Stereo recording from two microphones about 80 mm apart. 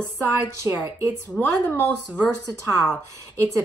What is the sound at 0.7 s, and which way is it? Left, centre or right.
Speech, right.